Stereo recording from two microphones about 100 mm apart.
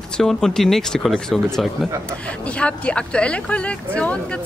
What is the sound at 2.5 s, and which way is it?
A woman's voice, 10° left (ahead or behind).